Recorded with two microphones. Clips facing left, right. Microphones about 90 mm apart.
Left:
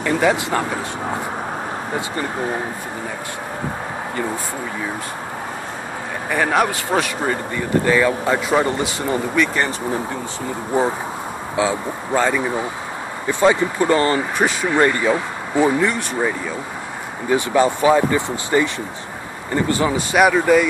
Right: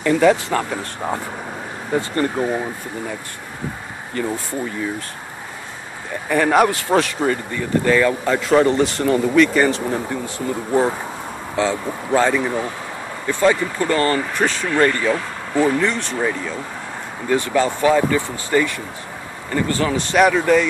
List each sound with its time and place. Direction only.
0.0 s speech: 10° left (ahead or behind)
6.3 s speech: centre (ahead or behind)